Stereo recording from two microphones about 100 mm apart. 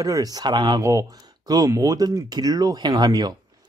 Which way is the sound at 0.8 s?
35° right (ahead or behind).